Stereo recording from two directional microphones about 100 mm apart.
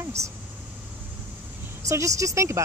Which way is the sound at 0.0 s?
30° right (ahead or behind).